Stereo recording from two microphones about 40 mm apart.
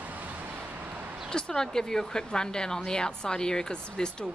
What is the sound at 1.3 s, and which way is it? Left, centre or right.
A woman's voice, centre.